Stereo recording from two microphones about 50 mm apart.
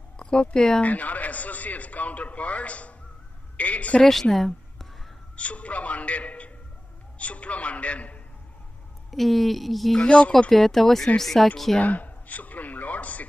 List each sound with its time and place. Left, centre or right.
0.2 s speech: centre
0.8 s a man's voice: left
4.0 s a woman's voice: centre
5.3 s a man's voice: left
9.1 s a woman's voice: centre
10.0 s a man's voice: left
10.5 s a woman's voice: centre
11.8 s a sound: left